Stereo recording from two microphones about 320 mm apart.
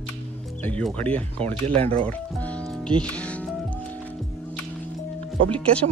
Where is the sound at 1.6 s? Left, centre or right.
Centre.